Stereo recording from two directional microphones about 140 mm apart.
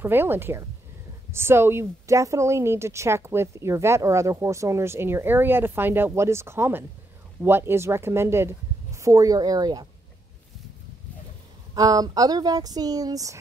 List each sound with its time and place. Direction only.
0.0 s a woman's voice: 15° right (ahead or behind)
11.7 s a woman's voice: 25° right (ahead or behind)